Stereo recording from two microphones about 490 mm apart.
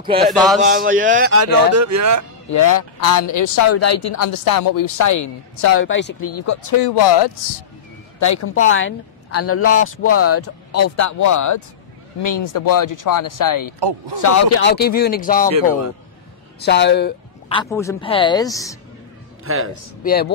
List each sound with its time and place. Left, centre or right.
0.2 s speech: centre
0.6 s speech: centre; by 2.2 s right
2.5 s a woman's voice: left
7.2 s speech: left
8.2 s speech: left
8.5 s a woman's voice: left
13.7 s speech: right
14.2 s a woman's voice: left
14.6 s speech: centre
16.6 s speech: left
19.4 s speech: right
20.0 s speech: centre